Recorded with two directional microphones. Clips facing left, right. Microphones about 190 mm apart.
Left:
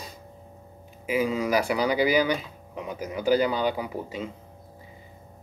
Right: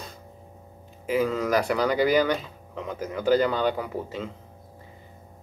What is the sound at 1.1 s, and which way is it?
Speech, 10° left (ahead or behind).